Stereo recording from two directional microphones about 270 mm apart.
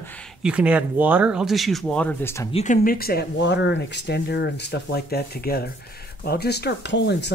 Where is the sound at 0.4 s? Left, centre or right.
Centre.